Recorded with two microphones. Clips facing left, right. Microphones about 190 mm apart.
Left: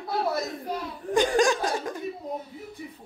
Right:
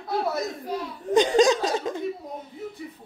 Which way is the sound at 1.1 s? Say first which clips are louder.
Right 3 dB; 20° right (ahead or behind).